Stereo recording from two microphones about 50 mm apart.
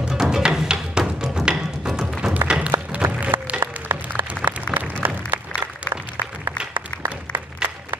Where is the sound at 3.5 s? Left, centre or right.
Right.